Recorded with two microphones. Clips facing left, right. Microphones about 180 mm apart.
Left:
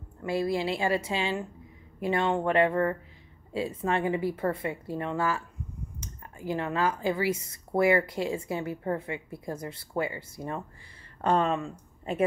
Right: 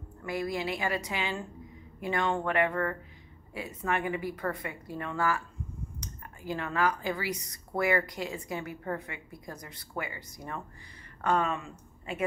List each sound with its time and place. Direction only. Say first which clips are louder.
0.2 s speech: left 5 dB; 25° left (ahead or behind)